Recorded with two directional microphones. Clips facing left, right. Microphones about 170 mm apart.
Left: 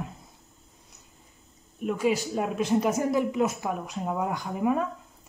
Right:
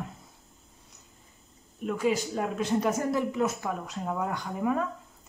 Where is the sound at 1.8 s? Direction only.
10° left (ahead or behind).